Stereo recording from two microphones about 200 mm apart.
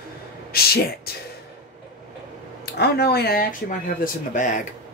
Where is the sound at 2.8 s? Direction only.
55° left (ahead or behind).